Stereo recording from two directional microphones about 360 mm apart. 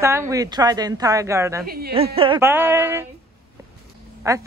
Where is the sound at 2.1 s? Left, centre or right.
Centre.